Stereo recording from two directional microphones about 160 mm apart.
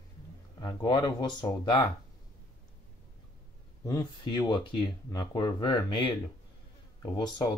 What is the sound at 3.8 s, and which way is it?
Speech, 25° left (ahead or behind).